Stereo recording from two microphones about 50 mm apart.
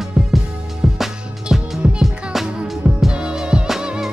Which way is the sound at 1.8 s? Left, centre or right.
Centre.